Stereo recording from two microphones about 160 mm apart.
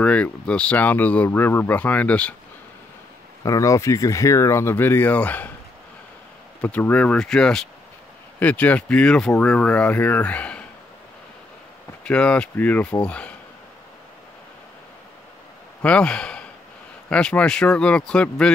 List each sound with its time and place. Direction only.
0.0 s speech: 5° left (ahead or behind)
3.4 s speech: 20° left (ahead or behind)
6.6 s speech: 10° left (ahead or behind)
12.0 s speech: 5° left (ahead or behind)
15.8 s speech: 5° left (ahead or behind)